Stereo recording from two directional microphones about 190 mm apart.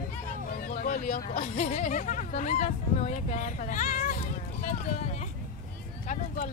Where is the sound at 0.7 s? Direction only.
40° left (ahead or behind).